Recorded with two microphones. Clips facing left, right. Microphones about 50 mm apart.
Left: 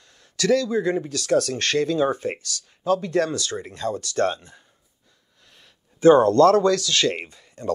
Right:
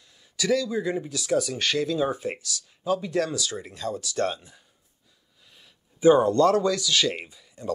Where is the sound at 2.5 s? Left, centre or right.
Centre.